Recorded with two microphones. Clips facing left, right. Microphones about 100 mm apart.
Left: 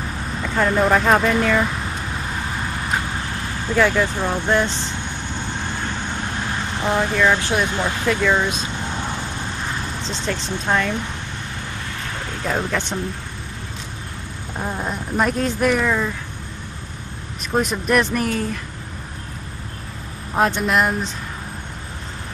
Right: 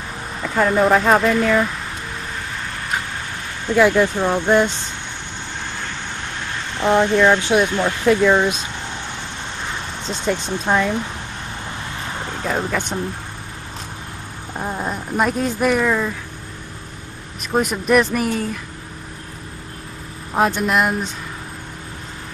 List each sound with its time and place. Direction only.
0.4 s speech: 5° right (ahead or behind)
3.7 s speech: 15° right (ahead or behind)
6.8 s speech: 25° right (ahead or behind)
10.2 s speech: 10° right (ahead or behind)
12.4 s speech: 10° right (ahead or behind)
14.6 s speech: 5° right (ahead or behind)
17.4 s speech: 5° right (ahead or behind)
20.3 s speech: 5° right (ahead or behind)